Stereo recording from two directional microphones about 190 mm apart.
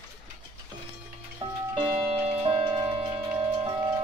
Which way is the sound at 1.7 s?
30° right (ahead or behind).